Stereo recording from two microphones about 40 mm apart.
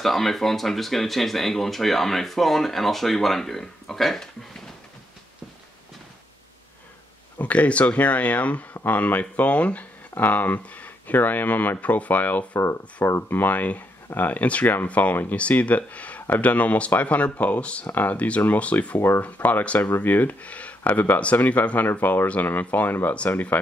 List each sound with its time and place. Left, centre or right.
0.0 s speech: centre
7.3 s speech: left
10.1 s speech: left
13.0 s speech: left
13.4 s speech: left
18.9 s speech: left
19.2 s speech: left
19.8 s speech: left
22.0 s speech: left